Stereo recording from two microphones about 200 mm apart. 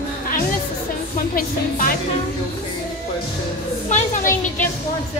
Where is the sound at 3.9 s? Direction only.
35° left (ahead or behind).